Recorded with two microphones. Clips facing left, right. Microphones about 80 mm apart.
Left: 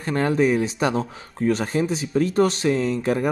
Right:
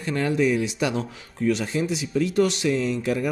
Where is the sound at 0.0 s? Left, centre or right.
Left.